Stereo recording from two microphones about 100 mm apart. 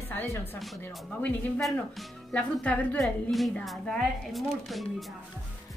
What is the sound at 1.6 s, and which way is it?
Speech, 5° left (ahead or behind).